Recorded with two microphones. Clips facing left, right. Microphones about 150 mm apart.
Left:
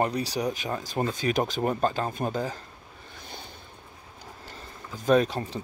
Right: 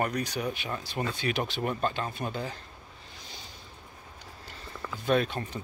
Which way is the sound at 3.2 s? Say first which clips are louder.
Left 6 dB; 55° left (ahead or behind).